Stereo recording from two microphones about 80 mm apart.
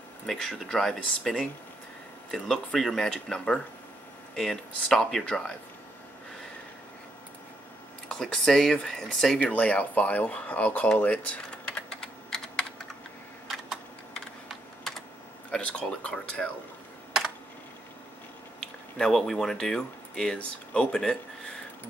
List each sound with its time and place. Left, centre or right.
0.3 s speech: centre
8.1 s speech: centre
9.4 s speech: centre
14.5 s computer keyboard: centre
15.5 s speech: centre
18.6 s speech: centre